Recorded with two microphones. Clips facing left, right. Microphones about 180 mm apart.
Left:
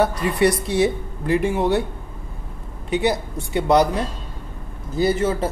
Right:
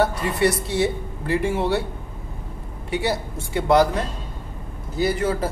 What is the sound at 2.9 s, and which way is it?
Speech, 20° left (ahead or behind).